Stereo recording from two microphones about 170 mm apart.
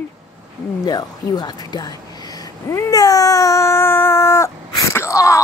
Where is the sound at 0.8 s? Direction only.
25° left (ahead or behind).